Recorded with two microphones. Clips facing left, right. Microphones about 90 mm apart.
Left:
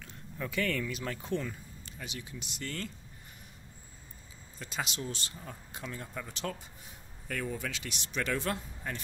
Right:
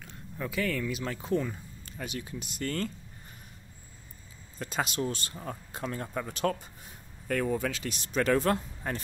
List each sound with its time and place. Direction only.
0.4 s speech: 5° right (ahead or behind)
1.9 s speech: 50° right (ahead or behind)
4.6 s speech: 45° right (ahead or behind)